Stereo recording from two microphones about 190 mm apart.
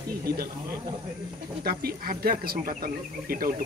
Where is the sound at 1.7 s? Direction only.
55° right (ahead or behind).